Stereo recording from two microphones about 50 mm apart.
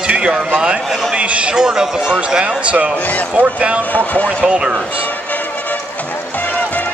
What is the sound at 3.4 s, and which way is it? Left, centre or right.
Speech, right.